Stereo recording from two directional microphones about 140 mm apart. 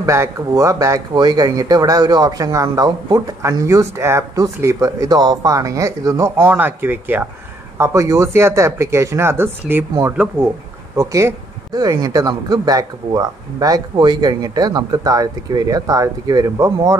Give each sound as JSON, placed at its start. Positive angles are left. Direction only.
{"t": 0.0, "sound": "speech", "side_deg": -20}